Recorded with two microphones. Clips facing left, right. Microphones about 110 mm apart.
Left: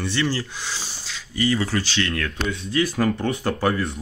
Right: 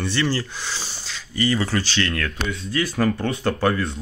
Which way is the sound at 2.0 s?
20° left (ahead or behind).